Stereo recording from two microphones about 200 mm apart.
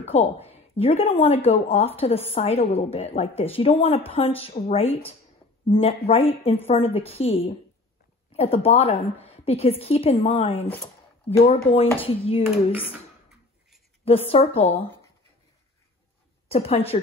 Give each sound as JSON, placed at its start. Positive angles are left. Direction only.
{"t": 0.0, "sound": "a woman's voice", "side_deg": 30}
{"t": 14.0, "sound": "a woman's voice", "side_deg": 30}
{"t": 16.5, "sound": "a woman's voice", "side_deg": 30}